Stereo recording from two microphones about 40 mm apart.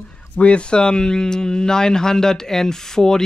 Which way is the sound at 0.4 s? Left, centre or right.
Left.